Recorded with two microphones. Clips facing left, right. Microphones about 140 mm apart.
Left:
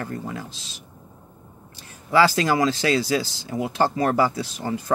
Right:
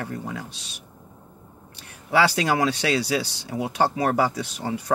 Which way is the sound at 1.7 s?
65° right (ahead or behind).